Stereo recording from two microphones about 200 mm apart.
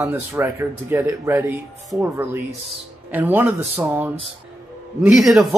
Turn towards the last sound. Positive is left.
turn(degrees=0)  # may be behind; listen again after turning